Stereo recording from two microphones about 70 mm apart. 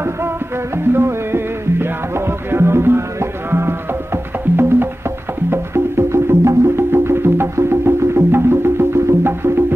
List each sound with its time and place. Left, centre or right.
0.9 s music: right